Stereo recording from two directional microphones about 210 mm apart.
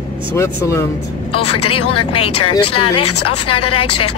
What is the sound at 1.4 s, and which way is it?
A woman's voice, 90° left.